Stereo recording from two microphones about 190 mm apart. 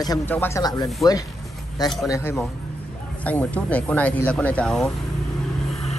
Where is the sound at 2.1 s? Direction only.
10° left (ahead or behind).